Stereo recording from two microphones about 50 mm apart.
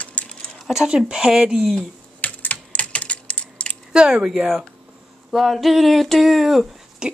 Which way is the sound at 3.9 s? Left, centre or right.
Centre.